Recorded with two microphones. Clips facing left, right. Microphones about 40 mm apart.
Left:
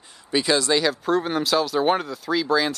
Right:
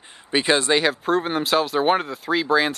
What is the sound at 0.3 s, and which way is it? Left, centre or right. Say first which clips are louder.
Speech: right 2 dB; right.